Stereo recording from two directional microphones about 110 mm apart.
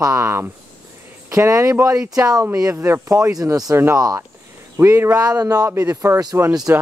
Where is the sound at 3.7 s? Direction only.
25° right (ahead or behind).